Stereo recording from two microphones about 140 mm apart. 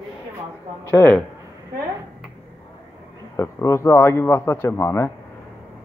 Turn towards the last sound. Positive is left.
turn(degrees=15)  # may be behind; listen again after turning